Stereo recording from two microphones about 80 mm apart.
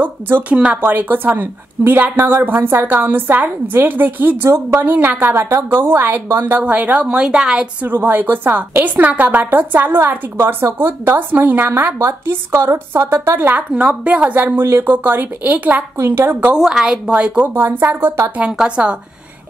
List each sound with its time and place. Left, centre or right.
0.0 s a woman's voice: right
6.6 s speech: centre
7.8 s a woman's voice: right
13.6 s a woman's voice: centre
16.5 s a woman's voice: centre; by 18.1 s right
18.4 s speech: centre